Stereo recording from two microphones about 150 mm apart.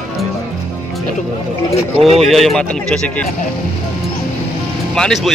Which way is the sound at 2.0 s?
40° right (ahead or behind).